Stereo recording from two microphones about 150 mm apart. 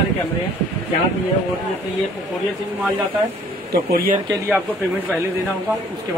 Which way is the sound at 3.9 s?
80° right.